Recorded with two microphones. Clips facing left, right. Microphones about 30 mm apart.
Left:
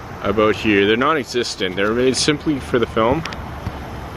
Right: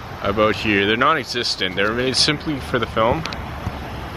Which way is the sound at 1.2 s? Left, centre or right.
Right.